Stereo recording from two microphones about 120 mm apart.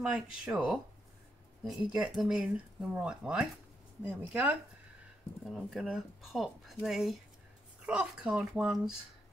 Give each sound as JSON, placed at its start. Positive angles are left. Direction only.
{"t": 0.5, "sound": "speech", "side_deg": -10}
{"t": 5.4, "sound": "speech", "side_deg": 0}